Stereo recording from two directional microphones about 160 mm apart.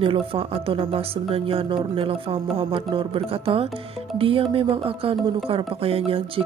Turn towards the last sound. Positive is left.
turn(degrees=-35)  # may be behind; listen again after turning